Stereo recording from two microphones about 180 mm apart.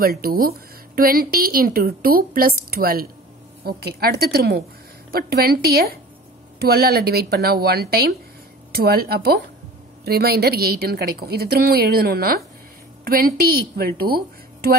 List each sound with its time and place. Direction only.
0.0 s speech: 55° right (ahead or behind)